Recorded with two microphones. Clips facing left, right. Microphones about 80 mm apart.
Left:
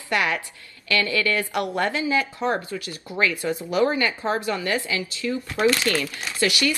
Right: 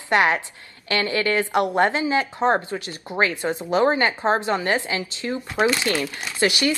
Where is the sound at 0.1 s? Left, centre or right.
Right.